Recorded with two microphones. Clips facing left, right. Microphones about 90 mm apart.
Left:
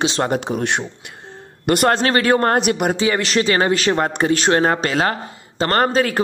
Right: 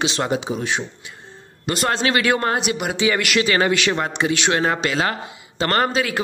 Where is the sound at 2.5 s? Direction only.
50° left (ahead or behind).